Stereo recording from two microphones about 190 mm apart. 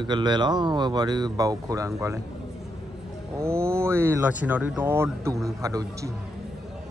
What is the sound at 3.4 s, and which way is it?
Speech, 15° right (ahead or behind).